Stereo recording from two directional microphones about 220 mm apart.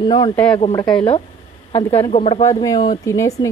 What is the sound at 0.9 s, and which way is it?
Speech, 20° left (ahead or behind).